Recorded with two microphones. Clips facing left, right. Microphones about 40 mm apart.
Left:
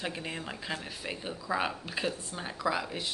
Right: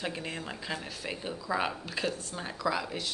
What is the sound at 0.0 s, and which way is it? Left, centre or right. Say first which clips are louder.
Speech: even; centre.